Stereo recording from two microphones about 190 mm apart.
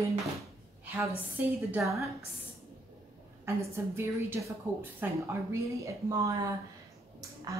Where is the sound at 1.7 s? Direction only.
15° right (ahead or behind).